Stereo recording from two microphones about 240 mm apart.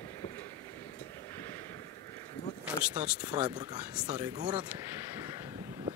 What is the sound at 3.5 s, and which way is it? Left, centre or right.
Speech, centre.